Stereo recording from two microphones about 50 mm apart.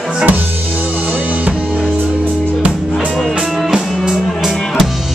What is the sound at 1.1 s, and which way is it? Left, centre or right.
Music, right.